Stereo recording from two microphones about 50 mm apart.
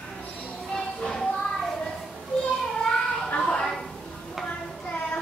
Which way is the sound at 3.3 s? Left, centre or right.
Centre.